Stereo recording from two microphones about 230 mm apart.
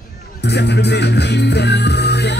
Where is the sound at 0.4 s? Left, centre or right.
Left.